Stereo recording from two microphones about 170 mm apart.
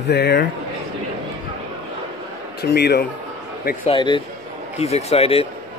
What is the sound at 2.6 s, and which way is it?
Speech, 75° left (ahead or behind).